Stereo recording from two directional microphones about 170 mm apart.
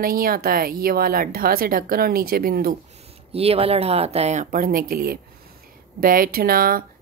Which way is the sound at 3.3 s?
35° right (ahead or behind).